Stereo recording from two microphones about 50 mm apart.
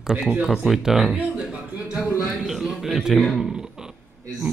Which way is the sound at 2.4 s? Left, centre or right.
Centre.